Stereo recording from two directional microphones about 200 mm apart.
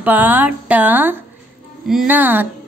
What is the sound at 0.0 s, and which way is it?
A woman's voice, 10° right (ahead or behind).